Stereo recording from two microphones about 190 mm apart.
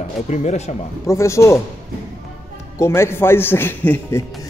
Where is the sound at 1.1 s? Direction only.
15° left (ahead or behind).